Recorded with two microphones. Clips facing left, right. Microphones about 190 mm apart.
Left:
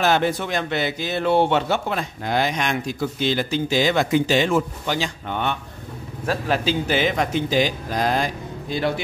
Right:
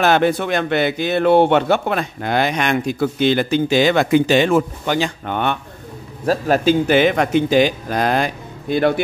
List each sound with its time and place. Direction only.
0.0 s speech: 60° right (ahead or behind)
6.2 s speech: 45° right (ahead or behind)